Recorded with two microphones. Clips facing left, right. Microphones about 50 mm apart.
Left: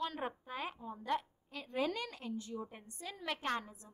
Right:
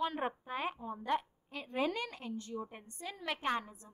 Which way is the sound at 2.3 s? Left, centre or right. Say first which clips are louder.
Right 1 dB; centre.